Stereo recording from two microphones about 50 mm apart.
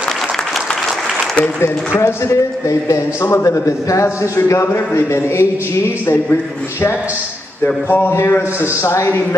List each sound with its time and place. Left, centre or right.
2.0 s a man's voice: left
4.7 s speech: left
7.6 s a man's voice: left
8.1 s a man's voice: left
8.8 s speech: left